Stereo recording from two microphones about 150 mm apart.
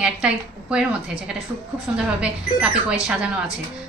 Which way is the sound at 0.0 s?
5° right (ahead or behind).